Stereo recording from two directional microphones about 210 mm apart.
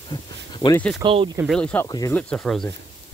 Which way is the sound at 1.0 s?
20° right (ahead or behind).